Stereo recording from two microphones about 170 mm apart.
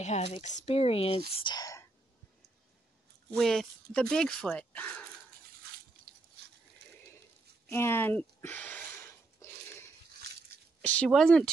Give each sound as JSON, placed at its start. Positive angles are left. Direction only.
{"t": 0.0, "sound": "speech", "side_deg": 40}
{"t": 3.3, "sound": "speech", "side_deg": 0}
{"t": 6.8, "sound": "ratchet", "side_deg": -90}
{"t": 7.7, "sound": "a sound", "side_deg": 15}
{"t": 11.1, "sound": "speech", "side_deg": 5}